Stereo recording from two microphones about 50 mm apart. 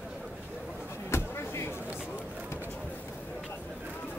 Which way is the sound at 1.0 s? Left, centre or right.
Left.